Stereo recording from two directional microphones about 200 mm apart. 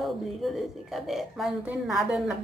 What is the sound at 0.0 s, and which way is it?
A woman's voice, centre (ahead or behind).